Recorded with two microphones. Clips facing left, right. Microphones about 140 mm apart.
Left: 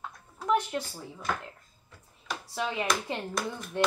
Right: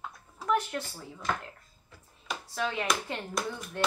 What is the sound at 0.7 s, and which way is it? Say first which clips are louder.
Speech: left 2 dB; 15° left (ahead or behind).